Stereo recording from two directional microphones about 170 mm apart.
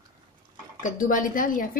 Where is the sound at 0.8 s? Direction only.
50° left (ahead or behind).